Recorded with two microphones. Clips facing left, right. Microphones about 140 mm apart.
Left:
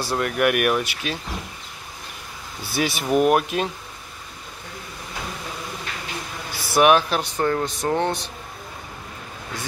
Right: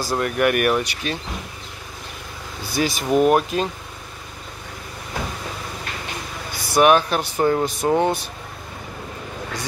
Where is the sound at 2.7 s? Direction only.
5° left (ahead or behind).